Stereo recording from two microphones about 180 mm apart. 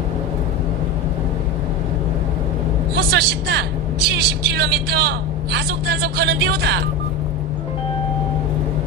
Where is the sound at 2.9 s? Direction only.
65° right (ahead or behind).